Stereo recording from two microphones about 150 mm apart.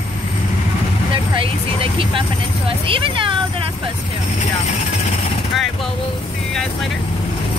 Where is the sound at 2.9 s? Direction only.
35° right (ahead or behind).